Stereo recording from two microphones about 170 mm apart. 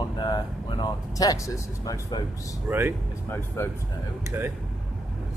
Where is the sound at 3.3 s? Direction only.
15° left (ahead or behind).